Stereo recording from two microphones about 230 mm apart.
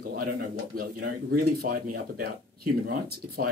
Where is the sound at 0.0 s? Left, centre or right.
Right.